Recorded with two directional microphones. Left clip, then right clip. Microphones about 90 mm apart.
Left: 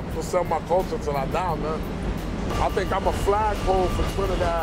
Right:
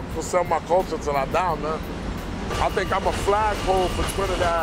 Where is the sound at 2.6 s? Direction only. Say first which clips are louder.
Right 2 dB; 10° right (ahead or behind).